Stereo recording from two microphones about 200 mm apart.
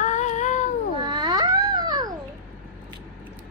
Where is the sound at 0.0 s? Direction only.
35° left (ahead or behind).